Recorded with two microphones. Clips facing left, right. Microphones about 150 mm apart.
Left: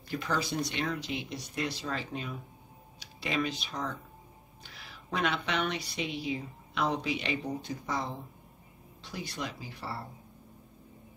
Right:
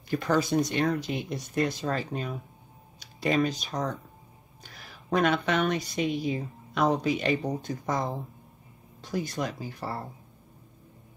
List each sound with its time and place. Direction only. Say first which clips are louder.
0.1 s speech: right 7 dB; 50° right (ahead or behind)